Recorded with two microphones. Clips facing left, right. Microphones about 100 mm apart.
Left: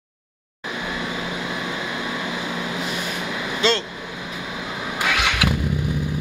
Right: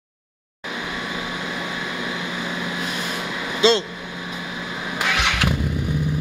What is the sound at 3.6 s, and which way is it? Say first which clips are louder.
Speech: right 4 dB; 20° right (ahead or behind).